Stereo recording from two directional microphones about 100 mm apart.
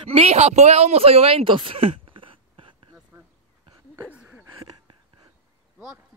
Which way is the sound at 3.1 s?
30° right (ahead or behind).